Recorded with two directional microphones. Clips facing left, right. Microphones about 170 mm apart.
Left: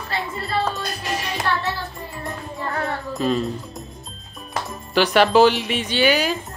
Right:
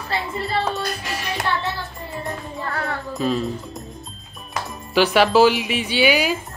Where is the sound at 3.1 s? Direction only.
Centre (ahead or behind).